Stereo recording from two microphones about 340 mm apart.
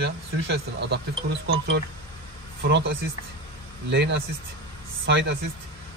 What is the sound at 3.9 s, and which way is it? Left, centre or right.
Speech, right.